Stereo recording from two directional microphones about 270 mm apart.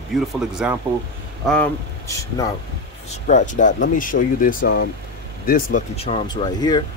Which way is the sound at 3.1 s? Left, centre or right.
Left.